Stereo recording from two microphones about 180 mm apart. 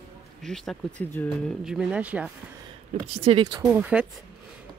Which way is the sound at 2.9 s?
30° right (ahead or behind).